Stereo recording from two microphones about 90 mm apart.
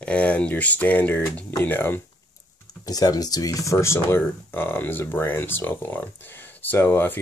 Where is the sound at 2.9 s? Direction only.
45° left (ahead or behind).